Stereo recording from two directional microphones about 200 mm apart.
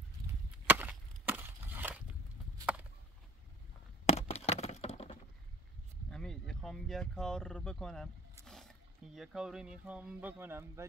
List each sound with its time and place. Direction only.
0.7 s wood: 10° right (ahead or behind)
2.6 s a sound: 5° right (ahead or behind)
4.0 s crack: 30° left (ahead or behind)
6.0 s speech: 5° left (ahead or behind); by 10.9 s 10° right (ahead or behind)